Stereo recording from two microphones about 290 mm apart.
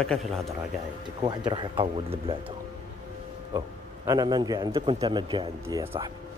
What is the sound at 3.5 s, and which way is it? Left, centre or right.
A man's voice, centre.